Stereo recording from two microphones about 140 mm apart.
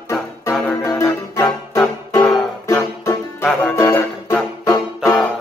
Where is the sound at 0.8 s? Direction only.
25° left (ahead or behind).